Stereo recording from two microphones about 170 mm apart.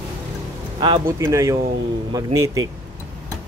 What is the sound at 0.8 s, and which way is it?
Speech, 25° right (ahead or behind).